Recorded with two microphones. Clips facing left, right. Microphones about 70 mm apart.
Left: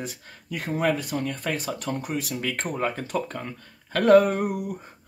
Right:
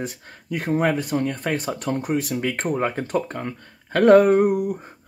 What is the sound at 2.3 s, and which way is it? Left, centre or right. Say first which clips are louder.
Speech: right 5 dB; right.